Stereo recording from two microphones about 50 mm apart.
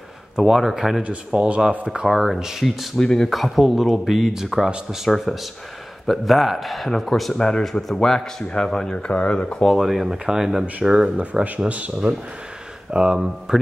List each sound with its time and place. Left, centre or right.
0.4 s speech: centre
1.0 s speech: right
2.0 s speech: centre
3.0 s speech: centre
3.3 s speech: centre
7.3 s speech: centre
9.7 s speech: centre
11.4 s speech: right
12.9 s speech: centre